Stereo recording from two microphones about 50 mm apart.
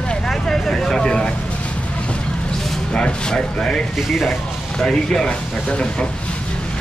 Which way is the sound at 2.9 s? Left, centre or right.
Centre.